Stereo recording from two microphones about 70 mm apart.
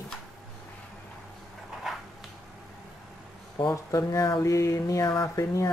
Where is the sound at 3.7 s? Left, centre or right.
Left.